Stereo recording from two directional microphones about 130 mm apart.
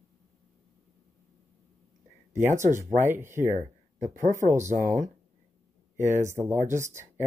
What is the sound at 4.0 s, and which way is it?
Speech, 75° right (ahead or behind).